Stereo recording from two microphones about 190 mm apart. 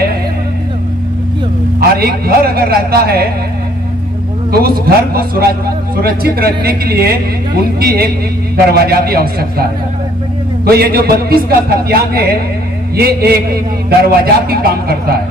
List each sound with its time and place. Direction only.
1.8 s a man's voice: 55° right (ahead or behind)
4.5 s a man's voice: 55° right (ahead or behind)